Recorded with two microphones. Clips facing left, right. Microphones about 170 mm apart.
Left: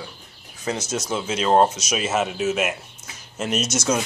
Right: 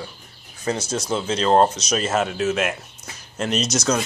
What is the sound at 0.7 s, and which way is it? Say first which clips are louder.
Speech: right 1 dB; 30° right (ahead or behind).